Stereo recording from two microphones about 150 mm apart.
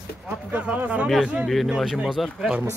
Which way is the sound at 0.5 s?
10° right (ahead or behind).